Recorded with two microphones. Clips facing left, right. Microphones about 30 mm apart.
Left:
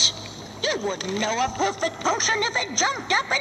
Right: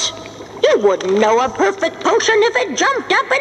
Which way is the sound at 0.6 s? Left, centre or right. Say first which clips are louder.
Right 13 dB; right.